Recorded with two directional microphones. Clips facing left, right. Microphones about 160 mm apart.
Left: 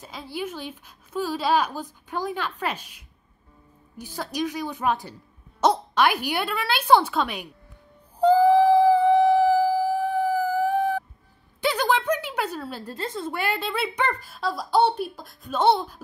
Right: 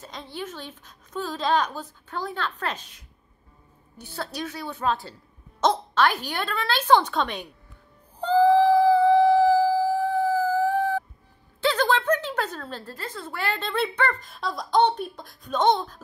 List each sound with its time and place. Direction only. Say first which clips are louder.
0.0 s a woman's voice: left 3 dB; 10° left (ahead or behind)
8.2 s a sound: left 2 dB; 10° left (ahead or behind)
12.9 s a woman's voice: left 5 dB; 20° left (ahead or behind)
14.3 s speech: left 1 dB; centre (ahead or behind)